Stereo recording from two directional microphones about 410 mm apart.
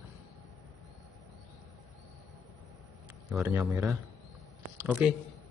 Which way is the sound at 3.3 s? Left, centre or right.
Centre.